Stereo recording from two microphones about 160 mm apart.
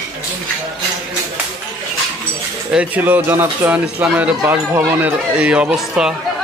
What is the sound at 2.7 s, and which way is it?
Cutlery, 10° right (ahead or behind).